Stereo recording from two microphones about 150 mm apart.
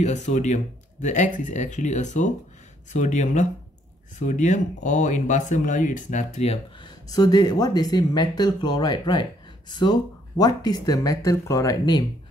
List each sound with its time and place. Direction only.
0.0 s speech: 50° left (ahead or behind)
7.1 s speech: 25° left (ahead or behind)